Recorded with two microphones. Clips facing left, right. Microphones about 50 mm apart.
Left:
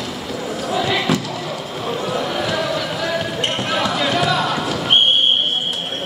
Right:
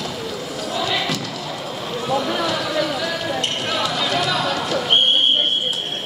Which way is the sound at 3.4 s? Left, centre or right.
Left.